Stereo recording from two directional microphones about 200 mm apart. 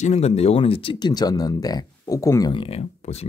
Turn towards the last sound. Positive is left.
turn(degrees=35)  # may be behind; listen again after turning